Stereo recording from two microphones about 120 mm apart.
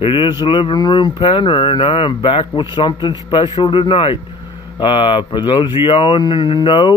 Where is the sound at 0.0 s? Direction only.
45° left (ahead or behind).